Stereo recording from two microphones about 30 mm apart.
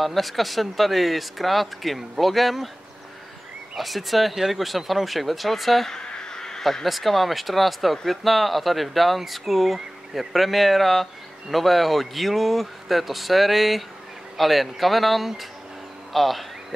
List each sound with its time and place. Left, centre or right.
0.0 s speech: centre
3.7 s speech: centre
5.9 s a sound: left
6.6 s speech: centre